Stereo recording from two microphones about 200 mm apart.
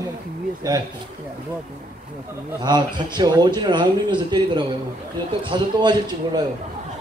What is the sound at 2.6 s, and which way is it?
Speech, 20° right (ahead or behind).